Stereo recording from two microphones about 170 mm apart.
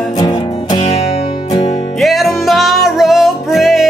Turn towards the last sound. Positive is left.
turn(degrees=0)  # may be behind; listen again after turning